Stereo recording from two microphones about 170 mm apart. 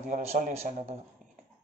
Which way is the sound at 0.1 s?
45° right (ahead or behind).